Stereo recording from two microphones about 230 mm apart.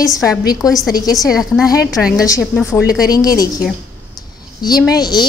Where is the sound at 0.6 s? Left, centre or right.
Centre.